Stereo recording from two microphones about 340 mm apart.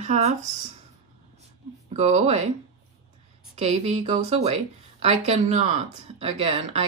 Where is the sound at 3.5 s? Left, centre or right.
Centre.